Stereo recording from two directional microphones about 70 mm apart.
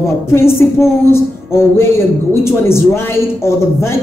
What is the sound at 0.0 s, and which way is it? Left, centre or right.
Speech, left.